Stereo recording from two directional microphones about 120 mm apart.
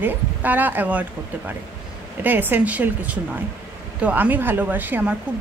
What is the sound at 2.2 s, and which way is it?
Speech, 15° right (ahead or behind).